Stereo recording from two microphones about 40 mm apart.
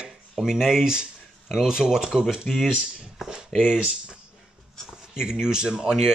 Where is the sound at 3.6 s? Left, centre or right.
Centre.